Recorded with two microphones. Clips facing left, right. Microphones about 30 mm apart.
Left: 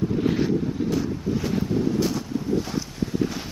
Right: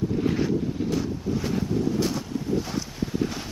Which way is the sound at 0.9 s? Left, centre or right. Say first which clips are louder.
Left 2 dB; centre.